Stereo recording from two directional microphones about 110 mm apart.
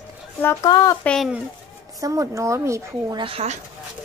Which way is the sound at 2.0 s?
30° right (ahead or behind).